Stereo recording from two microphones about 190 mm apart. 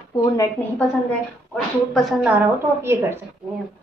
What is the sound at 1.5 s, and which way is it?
Speech, centre (ahead or behind).